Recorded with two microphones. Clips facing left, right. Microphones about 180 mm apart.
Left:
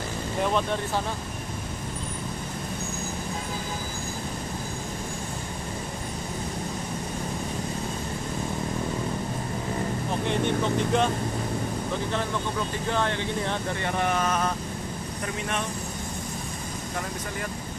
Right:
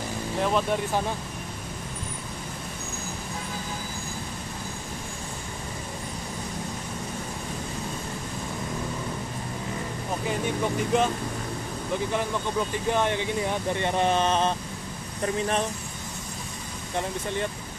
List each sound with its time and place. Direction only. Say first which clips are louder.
0.4 s speech: even; 5° right (ahead or behind)
10.2 s speech: left 2 dB; 5° right (ahead or behind)
12.9 s speech: right 1 dB; 15° right (ahead or behind)